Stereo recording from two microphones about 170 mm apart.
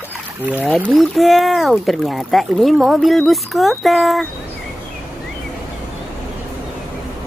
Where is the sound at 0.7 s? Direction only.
Centre (ahead or behind).